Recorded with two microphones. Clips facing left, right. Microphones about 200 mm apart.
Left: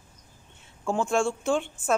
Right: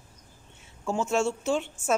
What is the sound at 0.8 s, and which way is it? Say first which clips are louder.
Speech: left 2 dB; 5° right (ahead or behind).